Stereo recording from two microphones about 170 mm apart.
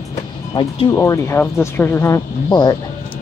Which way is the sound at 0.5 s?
25° left (ahead or behind).